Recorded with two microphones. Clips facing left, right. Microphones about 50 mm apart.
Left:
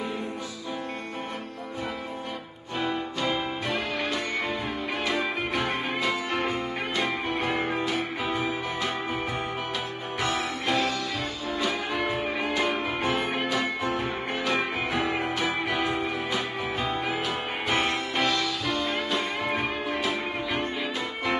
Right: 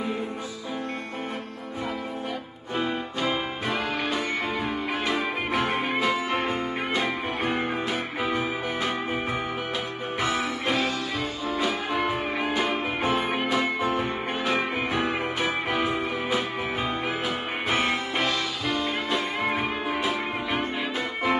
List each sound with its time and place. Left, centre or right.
2.8 s music: centre
10.3 s music: centre
15.0 s music: right
15.4 s music: centre